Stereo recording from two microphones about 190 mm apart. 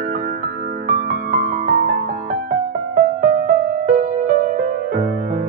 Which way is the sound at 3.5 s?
45° right (ahead or behind).